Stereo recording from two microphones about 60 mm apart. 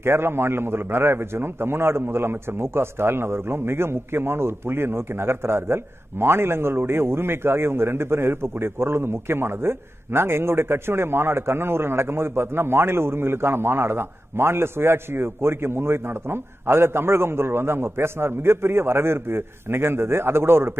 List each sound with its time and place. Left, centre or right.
0.0 s a man's voice: right